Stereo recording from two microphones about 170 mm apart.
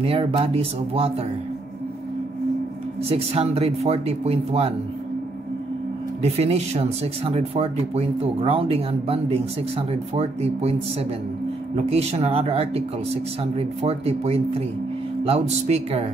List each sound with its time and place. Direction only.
0.0 s speech: 35° right (ahead or behind)
3.1 s speech: 35° right (ahead or behind)
6.2 s speech: 40° right (ahead or behind)